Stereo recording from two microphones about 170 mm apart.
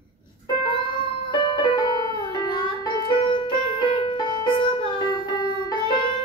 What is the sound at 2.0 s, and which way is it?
Music, 30° right (ahead or behind).